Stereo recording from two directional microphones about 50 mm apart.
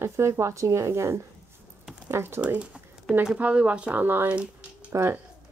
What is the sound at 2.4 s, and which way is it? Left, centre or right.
Speech, right.